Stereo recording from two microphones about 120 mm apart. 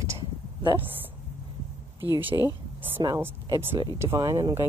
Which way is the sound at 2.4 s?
15° right (ahead or behind).